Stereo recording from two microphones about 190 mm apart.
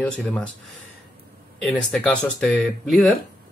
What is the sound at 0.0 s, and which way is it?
Speech, 5° left (ahead or behind).